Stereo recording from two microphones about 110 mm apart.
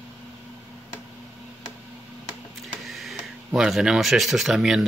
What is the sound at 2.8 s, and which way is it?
Speech, centre (ahead or behind).